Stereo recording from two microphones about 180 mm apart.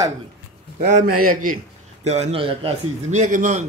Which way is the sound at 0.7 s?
45° right (ahead or behind).